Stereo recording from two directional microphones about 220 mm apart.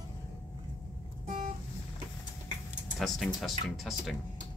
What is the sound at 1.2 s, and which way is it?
Vehicle, 35° right (ahead or behind).